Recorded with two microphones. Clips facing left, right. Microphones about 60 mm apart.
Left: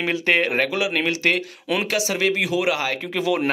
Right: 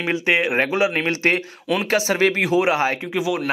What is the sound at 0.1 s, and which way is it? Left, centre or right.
Speech, centre.